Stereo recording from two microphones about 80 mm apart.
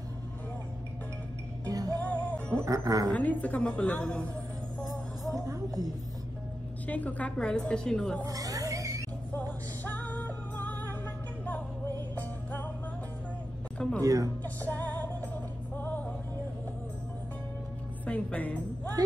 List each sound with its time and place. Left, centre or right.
1.7 s music: right
2.0 s music: centre
2.6 s speech: right
3.1 s a woman's voice: centre
5.3 s a sound: right
6.9 s a woman's voice: centre
8.3 s a sound: right
9.8 s music: centre
12.2 s music: centre
14.0 s speech: right
14.4 s music: left
18.0 s music: centre
19.0 s speech: right